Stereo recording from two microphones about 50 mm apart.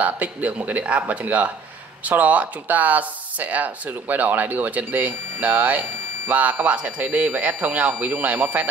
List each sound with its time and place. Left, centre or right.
0.0 s speech: right